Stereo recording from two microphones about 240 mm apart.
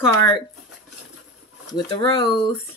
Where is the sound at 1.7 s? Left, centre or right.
Centre.